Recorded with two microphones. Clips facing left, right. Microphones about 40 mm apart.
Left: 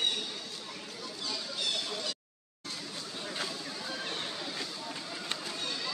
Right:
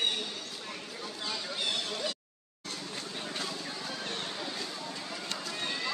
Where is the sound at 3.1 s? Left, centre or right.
Right.